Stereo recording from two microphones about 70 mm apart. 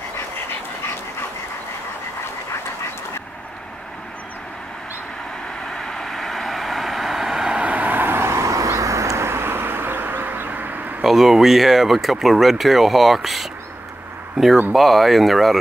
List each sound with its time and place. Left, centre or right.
5.9 s vehicle: centre; by 11.1 s right
11.1 s speech: centre
14.7 s speech: centre